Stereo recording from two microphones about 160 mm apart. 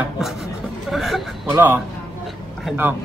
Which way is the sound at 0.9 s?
Centre (ahead or behind).